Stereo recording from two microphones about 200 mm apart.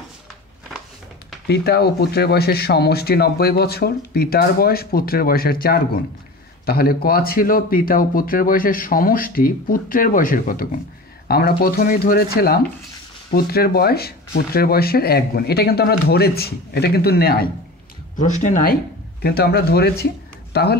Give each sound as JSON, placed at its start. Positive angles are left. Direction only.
{"t": 1.5, "sound": "speech", "side_deg": 55}
{"t": 13.3, "sound": "speech", "side_deg": 50}
{"t": 18.1, "sound": "speech", "side_deg": 40}